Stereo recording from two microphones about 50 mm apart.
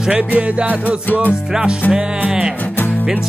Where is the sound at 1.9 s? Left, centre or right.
Centre.